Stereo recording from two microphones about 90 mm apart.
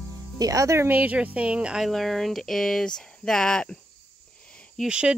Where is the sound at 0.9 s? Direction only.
15° right (ahead or behind).